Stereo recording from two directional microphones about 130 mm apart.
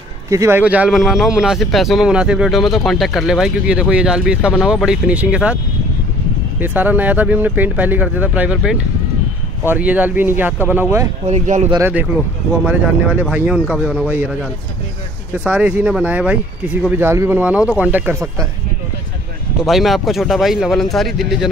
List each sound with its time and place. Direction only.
0.3 s speech: 25° right (ahead or behind)
0.6 s a man's voice: 10° right (ahead or behind)
6.6 s speech: 15° right (ahead or behind)
11.2 s speech: 65° right (ahead or behind)
11.8 s speech: 15° right (ahead or behind)
15.3 s speech: 15° right (ahead or behind)
19.6 s a man's voice: centre (ahead or behind)